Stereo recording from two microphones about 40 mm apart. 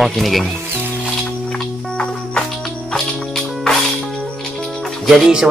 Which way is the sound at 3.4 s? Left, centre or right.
Centre.